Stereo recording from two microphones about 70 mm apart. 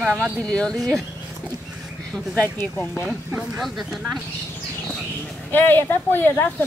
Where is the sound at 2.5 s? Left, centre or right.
Left.